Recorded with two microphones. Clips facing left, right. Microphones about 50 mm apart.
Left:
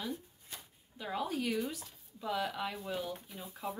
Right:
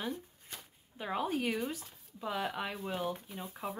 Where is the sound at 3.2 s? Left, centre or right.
Right.